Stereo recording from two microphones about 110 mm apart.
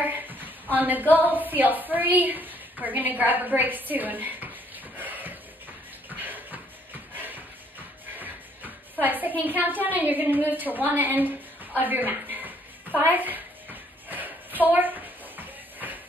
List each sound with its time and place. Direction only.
0.0 s a woman's voice: 15° right (ahead or behind)
4.9 s a sound: 15° right (ahead or behind)
6.0 s shuffle: 15° right (ahead or behind)
8.2 s music: 15° right (ahead or behind)
9.4 s a woman's voice: 15° right (ahead or behind)
14.0 s a sound: 15° right (ahead or behind)